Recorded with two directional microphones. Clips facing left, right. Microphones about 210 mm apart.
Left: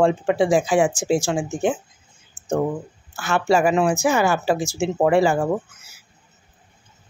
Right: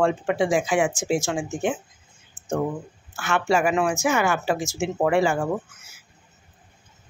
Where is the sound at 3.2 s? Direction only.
35° left (ahead or behind).